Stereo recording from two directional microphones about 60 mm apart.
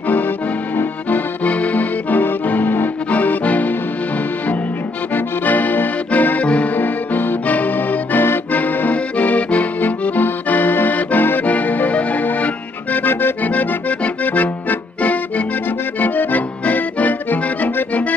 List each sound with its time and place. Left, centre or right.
0.7 s accordion: left
5.1 s accordion: left